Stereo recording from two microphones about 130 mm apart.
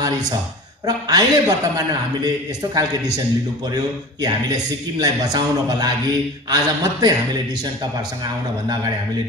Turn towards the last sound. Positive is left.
turn(degrees=-30)  # may be behind; listen again after turning